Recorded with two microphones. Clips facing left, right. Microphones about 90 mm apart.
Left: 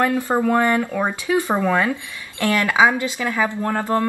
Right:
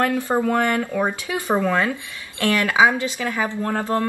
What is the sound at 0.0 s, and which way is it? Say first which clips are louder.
Speech: left 1 dB; 20° left (ahead or behind).